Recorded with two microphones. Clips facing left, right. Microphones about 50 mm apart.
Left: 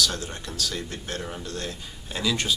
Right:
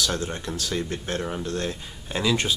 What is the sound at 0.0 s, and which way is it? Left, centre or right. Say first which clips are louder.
Speech: right 1 dB; right.